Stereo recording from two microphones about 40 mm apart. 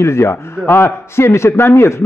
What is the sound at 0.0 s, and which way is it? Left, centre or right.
A man's voice, left.